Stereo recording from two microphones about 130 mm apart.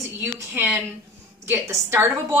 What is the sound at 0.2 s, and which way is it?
A woman's voice, 15° right (ahead or behind).